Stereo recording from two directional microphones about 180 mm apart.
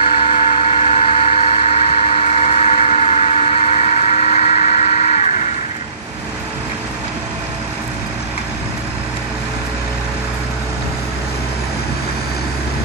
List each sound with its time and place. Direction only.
0.0 s vehicle: 30° left (ahead or behind)